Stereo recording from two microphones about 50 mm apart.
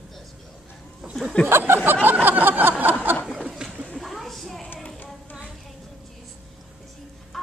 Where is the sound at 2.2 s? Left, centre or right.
Right.